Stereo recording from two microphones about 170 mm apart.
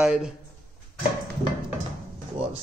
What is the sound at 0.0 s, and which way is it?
Speech, 5° right (ahead or behind).